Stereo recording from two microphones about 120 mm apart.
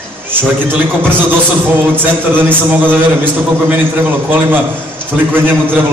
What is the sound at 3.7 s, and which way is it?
A man's voice, 15° right (ahead or behind).